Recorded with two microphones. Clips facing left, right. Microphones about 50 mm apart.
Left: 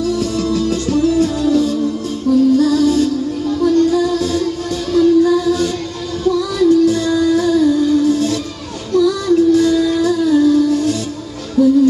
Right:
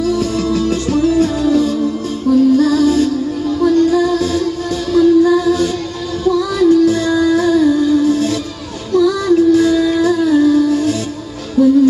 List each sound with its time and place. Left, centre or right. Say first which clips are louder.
0.0 s music: right 2 dB; right
6.7 s music: right 1 dB; right
8.9 s child singing: right 1 dB; right
11.6 s music: right 1 dB; right